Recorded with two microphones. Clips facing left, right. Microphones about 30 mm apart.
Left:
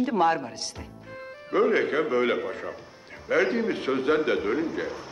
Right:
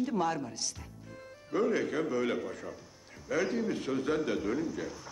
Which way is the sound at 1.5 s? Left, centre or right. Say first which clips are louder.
Left 7 dB; left.